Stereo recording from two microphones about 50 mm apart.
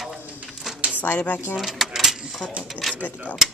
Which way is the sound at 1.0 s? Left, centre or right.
Left.